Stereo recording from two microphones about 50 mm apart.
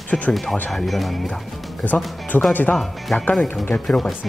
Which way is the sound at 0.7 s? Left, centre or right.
Centre.